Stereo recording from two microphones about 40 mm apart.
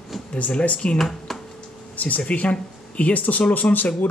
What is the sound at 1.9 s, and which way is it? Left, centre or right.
Speech, left.